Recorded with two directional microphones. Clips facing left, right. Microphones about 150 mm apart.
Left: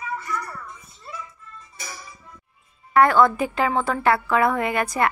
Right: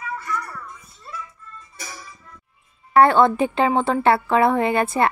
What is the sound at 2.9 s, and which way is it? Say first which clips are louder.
A woman's voice: right 2 dB; 30° right (ahead or behind).